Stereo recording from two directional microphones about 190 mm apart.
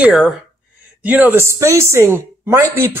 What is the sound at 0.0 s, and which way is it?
Speech, 5° right (ahead or behind).